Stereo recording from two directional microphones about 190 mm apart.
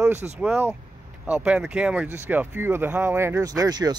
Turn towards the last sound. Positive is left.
turn(degrees=-20)  # may be behind; listen again after turning